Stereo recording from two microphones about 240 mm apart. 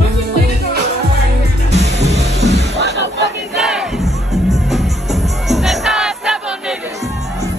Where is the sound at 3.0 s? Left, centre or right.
Right.